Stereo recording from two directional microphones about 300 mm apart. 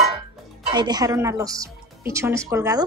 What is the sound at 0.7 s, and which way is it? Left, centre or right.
Speech, centre.